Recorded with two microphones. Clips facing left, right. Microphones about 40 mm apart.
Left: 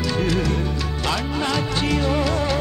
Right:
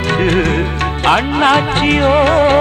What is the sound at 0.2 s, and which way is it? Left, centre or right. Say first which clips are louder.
Music: right 9 dB; right.